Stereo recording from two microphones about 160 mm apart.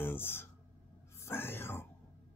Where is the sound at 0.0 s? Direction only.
15° left (ahead or behind).